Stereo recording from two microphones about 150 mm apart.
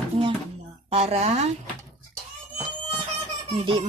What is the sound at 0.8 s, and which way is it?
Speech, 45° right (ahead or behind).